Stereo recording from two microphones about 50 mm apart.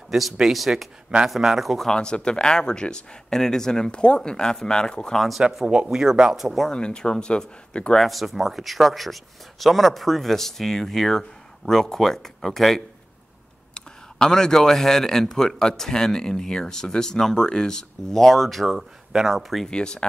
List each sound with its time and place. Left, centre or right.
0.1 s speech: centre
1.9 s speech: centre
5.4 s speech: centre
6.7 s speech: centre
7.9 s speech: centre
19.7 s speech: centre